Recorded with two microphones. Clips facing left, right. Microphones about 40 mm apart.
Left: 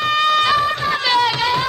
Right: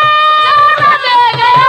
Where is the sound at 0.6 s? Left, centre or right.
Right.